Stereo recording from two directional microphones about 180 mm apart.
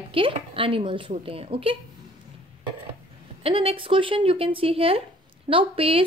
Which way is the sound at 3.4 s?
30° right (ahead or behind).